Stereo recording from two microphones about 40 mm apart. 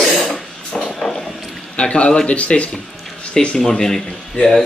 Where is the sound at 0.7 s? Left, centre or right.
Centre.